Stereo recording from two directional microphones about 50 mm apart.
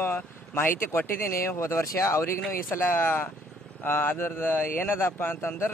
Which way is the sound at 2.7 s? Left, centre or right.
Left.